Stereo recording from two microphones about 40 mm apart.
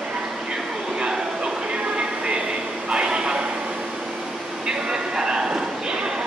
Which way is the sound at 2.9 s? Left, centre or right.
Right.